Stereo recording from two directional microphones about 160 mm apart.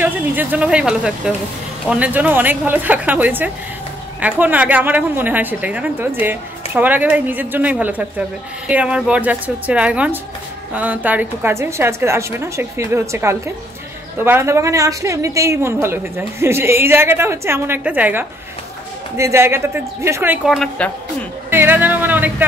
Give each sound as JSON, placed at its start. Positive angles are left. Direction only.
{"t": 0.0, "sound": "a woman's voice", "side_deg": -10}
{"t": 20.4, "sound": "a woman's voice", "side_deg": 0}
{"t": 21.5, "sound": "a woman's voice", "side_deg": -15}